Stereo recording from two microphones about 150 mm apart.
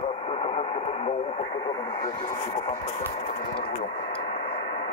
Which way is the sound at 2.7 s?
45° left (ahead or behind).